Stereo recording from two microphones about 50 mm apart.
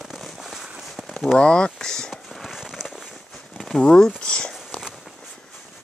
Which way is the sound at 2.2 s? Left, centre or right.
Centre.